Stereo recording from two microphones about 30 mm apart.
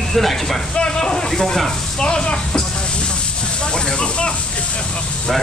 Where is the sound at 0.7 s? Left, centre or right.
Left.